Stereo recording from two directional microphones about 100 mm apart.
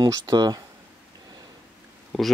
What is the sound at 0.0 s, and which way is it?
Speech, 40° right (ahead or behind).